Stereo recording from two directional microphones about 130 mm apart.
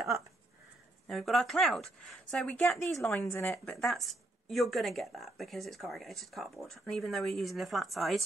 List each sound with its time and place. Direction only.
1.0 s speech: centre (ahead or behind)
3.1 s speech: 20° left (ahead or behind)
3.7 s speech: centre (ahead or behind)